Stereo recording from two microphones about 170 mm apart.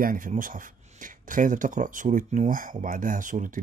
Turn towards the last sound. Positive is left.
turn(degrees=-50)  # may be behind; listen again after turning